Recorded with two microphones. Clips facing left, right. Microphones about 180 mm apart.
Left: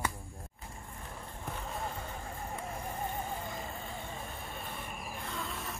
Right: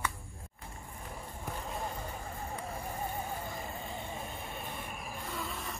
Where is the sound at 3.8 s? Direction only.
20° right (ahead or behind).